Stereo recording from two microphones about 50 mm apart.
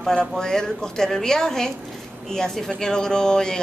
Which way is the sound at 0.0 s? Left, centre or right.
Centre.